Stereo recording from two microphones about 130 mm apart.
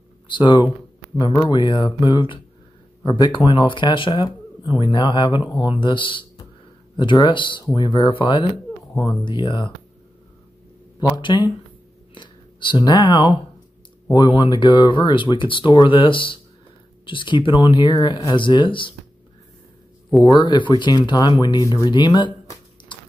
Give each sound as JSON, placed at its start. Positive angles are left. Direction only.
{"t": 0.4, "sound": "speech", "side_deg": 35}
{"t": 11.1, "sound": "speech", "side_deg": 35}
{"t": 20.1, "sound": "speech", "side_deg": 0}
{"t": 20.4, "sound": "speech", "side_deg": 35}